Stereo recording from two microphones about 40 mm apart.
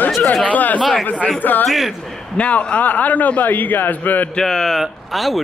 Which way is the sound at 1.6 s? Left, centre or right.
Centre.